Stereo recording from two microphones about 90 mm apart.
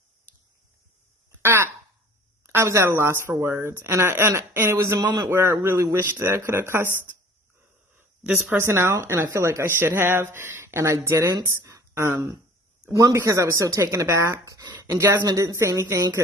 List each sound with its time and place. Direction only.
1.4 s a woman's voice: 25° right (ahead or behind)
5.0 s a man's voice: 55° right (ahead or behind)
5.3 s a woman's voice: 30° right (ahead or behind)
8.5 s a woman's voice: 25° right (ahead or behind)
11.4 s a sound: 35° right (ahead or behind)
13.1 s speech: 35° right (ahead or behind)
15.0 s a woman's voice: 25° right (ahead or behind)
15.2 s speech: 35° right (ahead or behind)